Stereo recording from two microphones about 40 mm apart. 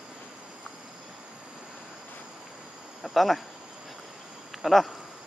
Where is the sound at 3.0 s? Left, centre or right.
Centre.